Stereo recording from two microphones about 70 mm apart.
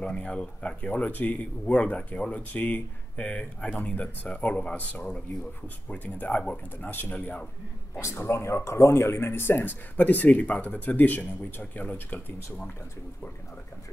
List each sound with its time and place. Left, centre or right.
0.0 s speech: centre
7.2 s a man's voice: centre
8.0 s speech: left